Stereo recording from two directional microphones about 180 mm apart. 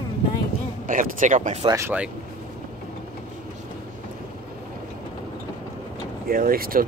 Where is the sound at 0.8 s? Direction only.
45° right (ahead or behind).